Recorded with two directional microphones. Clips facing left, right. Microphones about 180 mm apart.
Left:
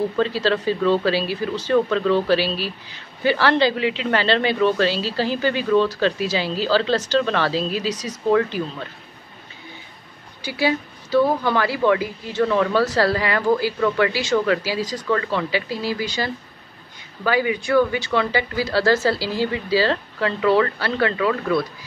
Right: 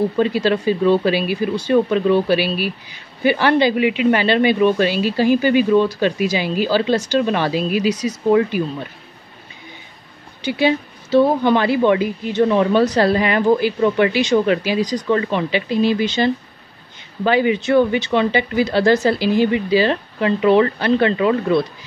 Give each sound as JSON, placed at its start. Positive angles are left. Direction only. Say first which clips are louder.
{"t": 0.2, "sound": "speech", "louder": "right 2 dB", "side_deg": -15}
{"t": 10.4, "sound": "a woman's voice", "louder": "right 4 dB", "side_deg": -25}